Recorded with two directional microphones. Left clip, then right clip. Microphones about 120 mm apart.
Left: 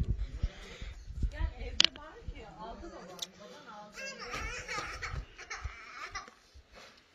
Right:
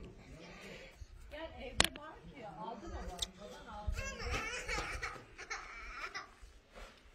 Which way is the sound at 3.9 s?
25° right (ahead or behind).